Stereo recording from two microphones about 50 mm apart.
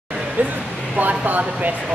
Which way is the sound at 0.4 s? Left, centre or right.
Right.